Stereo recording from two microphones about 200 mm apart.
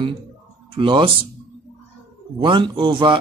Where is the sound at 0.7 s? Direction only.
25° right (ahead or behind).